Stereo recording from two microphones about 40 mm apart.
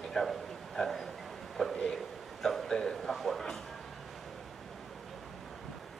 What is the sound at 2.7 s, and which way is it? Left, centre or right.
Speech, centre.